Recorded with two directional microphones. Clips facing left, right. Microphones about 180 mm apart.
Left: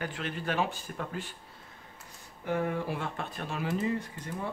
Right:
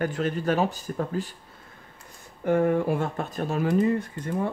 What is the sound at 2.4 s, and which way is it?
Speech, 50° right (ahead or behind).